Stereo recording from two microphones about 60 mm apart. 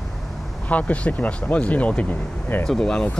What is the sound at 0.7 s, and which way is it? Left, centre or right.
Speech, left.